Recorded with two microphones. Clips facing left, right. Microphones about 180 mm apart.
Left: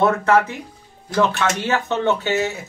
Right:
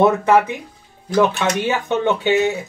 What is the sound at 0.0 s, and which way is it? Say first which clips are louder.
Speech: right 3 dB; 15° right (ahead or behind).